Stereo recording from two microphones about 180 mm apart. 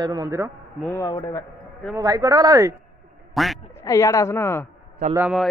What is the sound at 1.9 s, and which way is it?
Speech, 20° right (ahead or behind).